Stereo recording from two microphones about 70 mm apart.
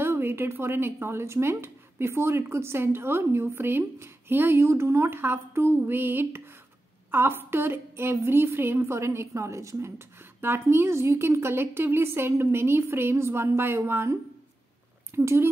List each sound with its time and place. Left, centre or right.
0.0 s a woman's voice: right
15.1 s a woman's voice: right